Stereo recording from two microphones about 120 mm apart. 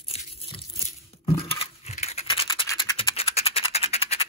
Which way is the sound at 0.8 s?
50° left (ahead or behind).